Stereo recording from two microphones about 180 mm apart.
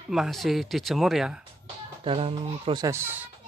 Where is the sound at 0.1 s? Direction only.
Centre (ahead or behind).